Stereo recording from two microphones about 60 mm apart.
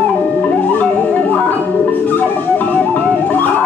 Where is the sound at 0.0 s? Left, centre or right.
Left.